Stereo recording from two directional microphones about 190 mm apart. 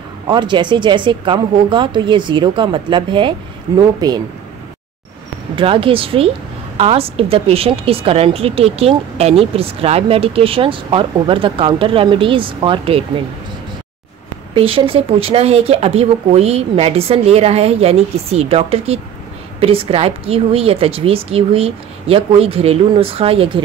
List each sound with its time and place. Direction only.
0.3 s a woman's voice: 25° right (ahead or behind)
5.6 s a woman's voice: 30° right (ahead or behind)
14.5 s speech: 30° right (ahead or behind)